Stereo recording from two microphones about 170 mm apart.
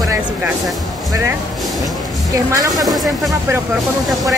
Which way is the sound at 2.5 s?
20° right (ahead or behind).